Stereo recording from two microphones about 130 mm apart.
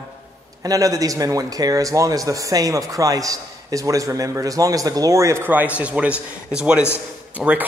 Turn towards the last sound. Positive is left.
turn(degrees=-10)  # may be behind; listen again after turning